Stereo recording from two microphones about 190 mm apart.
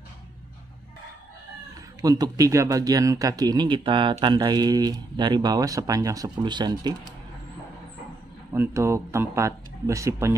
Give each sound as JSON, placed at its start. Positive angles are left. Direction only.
{"t": 2.0, "sound": "speech", "side_deg": -20}
{"t": 8.5, "sound": "speech", "side_deg": -15}